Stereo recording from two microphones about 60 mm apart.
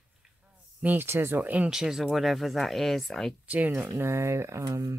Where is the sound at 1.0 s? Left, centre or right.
Right.